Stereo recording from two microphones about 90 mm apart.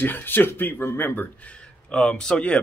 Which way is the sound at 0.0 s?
25° left (ahead or behind).